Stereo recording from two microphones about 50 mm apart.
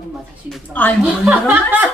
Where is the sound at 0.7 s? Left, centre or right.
Left.